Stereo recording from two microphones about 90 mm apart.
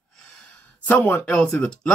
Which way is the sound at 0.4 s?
15° left (ahead or behind).